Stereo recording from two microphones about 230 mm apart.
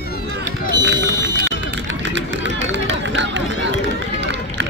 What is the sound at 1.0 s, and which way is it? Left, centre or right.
Run, right.